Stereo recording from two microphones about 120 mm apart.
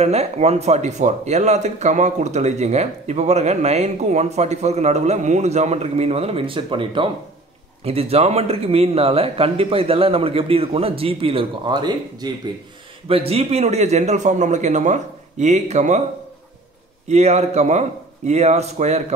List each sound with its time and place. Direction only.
0.0 s speech: 60° right (ahead or behind); by 7.1 s 45° right (ahead or behind)
7.8 s a man's voice: 55° right (ahead or behind); by 12.3 s 40° right (ahead or behind)
13.1 s speech: 55° right (ahead or behind); by 16.0 s 70° right (ahead or behind)
17.1 s speech: 65° right (ahead or behind)